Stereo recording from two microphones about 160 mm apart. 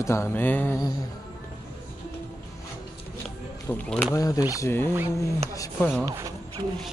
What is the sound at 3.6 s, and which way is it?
Speech, 10° left (ahead or behind).